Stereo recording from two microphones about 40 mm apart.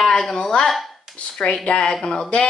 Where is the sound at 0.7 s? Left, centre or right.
Centre.